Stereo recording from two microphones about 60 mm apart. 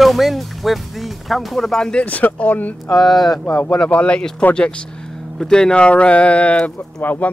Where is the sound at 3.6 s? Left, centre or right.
Centre.